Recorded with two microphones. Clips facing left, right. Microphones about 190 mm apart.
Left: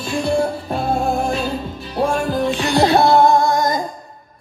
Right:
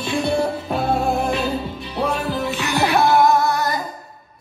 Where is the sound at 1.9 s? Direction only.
45° left (ahead or behind).